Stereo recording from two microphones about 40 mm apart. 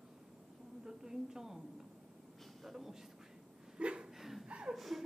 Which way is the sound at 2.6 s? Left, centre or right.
Centre.